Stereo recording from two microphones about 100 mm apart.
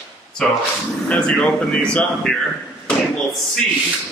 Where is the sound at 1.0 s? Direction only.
10° left (ahead or behind).